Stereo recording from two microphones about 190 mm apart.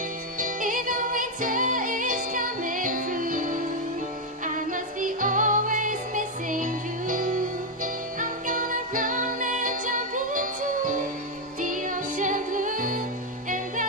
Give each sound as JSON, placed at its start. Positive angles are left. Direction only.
{"t": 0.4, "sound": "music", "side_deg": -45}